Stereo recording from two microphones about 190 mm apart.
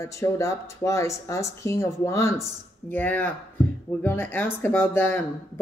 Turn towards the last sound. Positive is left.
turn(degrees=10)  # may be behind; listen again after turning